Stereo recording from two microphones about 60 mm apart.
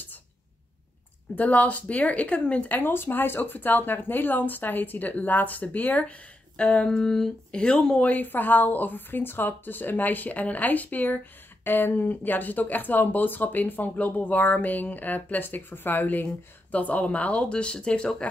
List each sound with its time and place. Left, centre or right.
1.3 s speech: left
2.8 s speech: left; by 8.1 s centre
8.1 s speech: left